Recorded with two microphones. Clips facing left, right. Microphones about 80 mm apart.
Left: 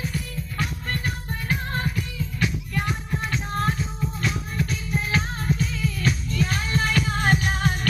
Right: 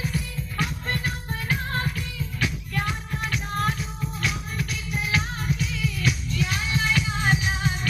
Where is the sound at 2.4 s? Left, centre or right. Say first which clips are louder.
Left 1 dB; left.